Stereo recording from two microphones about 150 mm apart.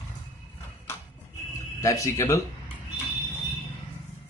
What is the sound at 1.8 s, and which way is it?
Speech, 20° left (ahead or behind).